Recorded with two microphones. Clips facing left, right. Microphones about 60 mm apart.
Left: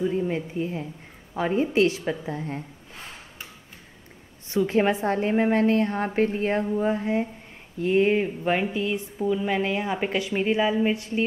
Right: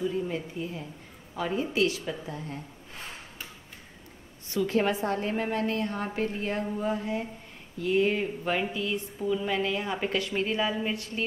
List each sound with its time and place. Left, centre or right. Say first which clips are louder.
0.0 s a woman's voice: left 5 dB; left
4.5 s a woman's voice: left 4 dB; left